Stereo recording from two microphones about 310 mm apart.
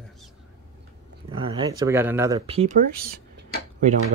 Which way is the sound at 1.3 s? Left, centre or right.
Centre.